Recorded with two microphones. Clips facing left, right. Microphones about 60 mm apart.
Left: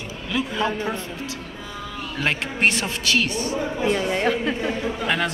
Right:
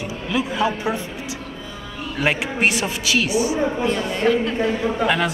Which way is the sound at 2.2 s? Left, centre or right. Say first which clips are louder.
Right 2 dB; centre.